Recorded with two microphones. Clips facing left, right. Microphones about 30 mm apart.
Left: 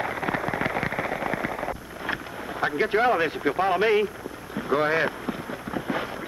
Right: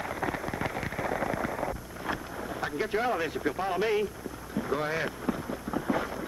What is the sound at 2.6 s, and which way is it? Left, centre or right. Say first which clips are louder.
Speech: left 8 dB; left.